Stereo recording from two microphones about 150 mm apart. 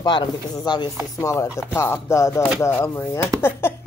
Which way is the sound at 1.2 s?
20° left (ahead or behind).